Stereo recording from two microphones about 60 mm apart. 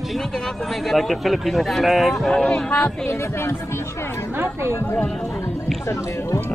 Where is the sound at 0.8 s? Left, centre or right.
Centre.